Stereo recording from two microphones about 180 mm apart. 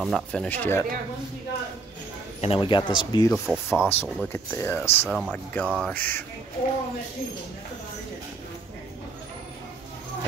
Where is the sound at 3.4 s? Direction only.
Centre (ahead or behind).